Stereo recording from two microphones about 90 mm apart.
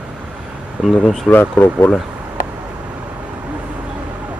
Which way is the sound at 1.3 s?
25° left (ahead or behind).